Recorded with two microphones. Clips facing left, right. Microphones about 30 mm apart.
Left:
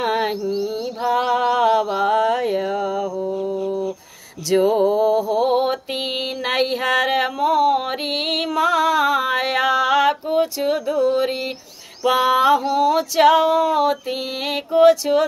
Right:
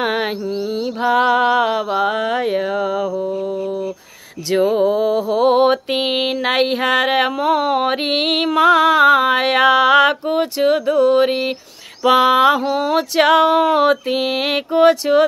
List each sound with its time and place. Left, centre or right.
0.0 s mantra: right
1.0 s mantra: right
3.4 s a sound: right
4.6 s mantra: centre; by 6.3 s right
6.3 s mantra: right